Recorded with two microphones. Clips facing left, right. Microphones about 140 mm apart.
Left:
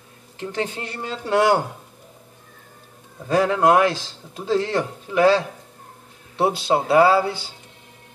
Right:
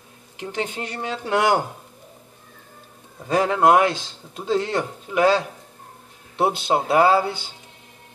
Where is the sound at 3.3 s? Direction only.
20° right (ahead or behind).